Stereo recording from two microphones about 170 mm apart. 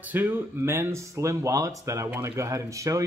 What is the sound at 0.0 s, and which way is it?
Speech, 10° right (ahead or behind).